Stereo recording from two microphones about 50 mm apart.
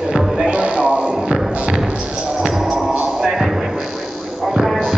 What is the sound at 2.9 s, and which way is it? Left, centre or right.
Music, right.